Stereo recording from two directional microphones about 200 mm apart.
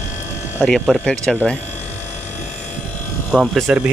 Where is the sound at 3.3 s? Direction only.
Centre (ahead or behind).